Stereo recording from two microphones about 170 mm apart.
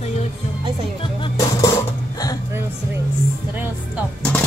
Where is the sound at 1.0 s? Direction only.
30° left (ahead or behind).